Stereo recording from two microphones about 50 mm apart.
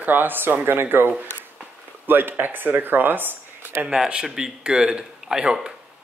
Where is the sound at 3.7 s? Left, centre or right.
Right.